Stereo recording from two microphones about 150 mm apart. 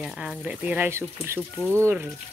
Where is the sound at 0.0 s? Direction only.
5° right (ahead or behind).